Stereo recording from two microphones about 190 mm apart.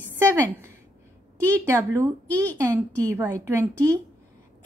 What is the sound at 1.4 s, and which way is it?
A woman's voice, 15° right (ahead or behind).